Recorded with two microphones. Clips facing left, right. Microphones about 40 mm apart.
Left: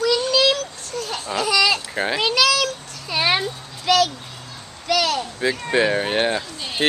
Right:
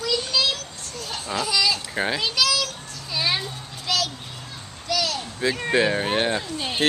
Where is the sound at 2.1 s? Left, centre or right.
Left.